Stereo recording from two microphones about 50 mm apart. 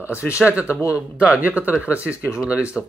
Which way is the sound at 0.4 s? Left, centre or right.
Right.